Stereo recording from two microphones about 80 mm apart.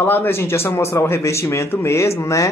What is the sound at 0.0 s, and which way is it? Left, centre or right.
A man's voice, left.